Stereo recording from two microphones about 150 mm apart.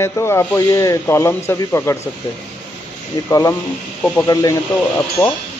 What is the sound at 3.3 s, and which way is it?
Speech, 20° left (ahead or behind).